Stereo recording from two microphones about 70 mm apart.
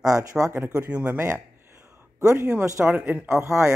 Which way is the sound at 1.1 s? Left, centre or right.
Right.